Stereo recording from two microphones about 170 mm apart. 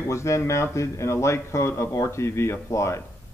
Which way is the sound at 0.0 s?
15° left (ahead or behind).